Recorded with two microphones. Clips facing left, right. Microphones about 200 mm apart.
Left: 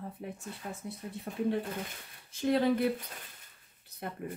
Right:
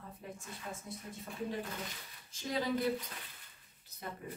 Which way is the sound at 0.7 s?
60° left (ahead or behind).